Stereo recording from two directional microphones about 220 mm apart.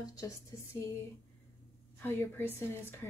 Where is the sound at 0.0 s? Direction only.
15° left (ahead or behind).